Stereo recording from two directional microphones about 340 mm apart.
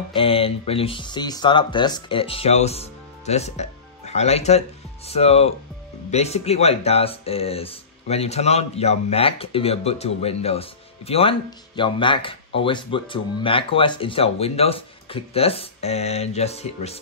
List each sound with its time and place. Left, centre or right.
0.1 s speech: centre